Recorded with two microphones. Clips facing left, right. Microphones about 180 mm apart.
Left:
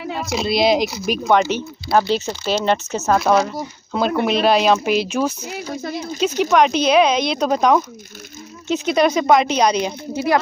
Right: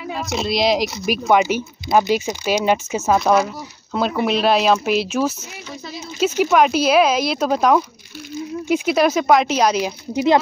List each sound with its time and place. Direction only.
0.1 s speech: centre (ahead or behind)
5.7 s a sound: 50° left (ahead or behind)
6.1 s speech: 5° right (ahead or behind)
10.1 s speech: 20° right (ahead or behind)